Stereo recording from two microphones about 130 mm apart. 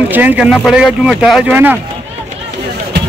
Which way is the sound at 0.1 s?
15° right (ahead or behind).